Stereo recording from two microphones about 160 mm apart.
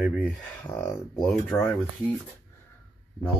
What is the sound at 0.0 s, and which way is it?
Speech, centre (ahead or behind).